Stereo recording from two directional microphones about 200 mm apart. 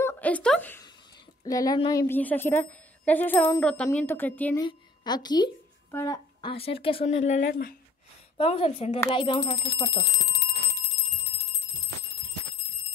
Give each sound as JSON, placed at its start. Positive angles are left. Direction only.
{"t": 0.0, "sound": "a sound", "side_deg": 10}
{"t": 1.4, "sound": "speech", "side_deg": 20}
{"t": 4.6, "sound": "speech", "side_deg": 20}
{"t": 7.4, "sound": "speech", "side_deg": 45}
{"t": 8.4, "sound": "speech", "side_deg": 30}